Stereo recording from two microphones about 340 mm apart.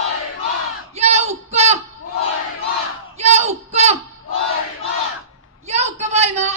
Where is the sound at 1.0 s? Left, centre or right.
Centre.